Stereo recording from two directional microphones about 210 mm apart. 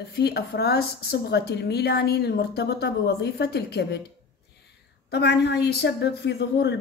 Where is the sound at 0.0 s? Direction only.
50° left (ahead or behind).